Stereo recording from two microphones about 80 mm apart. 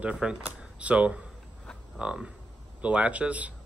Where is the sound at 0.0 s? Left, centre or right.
Centre.